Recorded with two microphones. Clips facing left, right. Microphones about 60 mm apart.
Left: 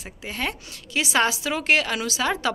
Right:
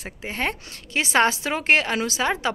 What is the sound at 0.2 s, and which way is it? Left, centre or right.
A woman's voice, right.